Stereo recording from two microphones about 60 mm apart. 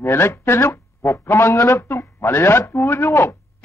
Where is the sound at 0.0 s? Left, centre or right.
Left.